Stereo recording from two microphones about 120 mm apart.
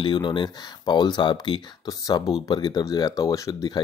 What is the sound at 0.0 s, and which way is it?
Speech, 40° left (ahead or behind).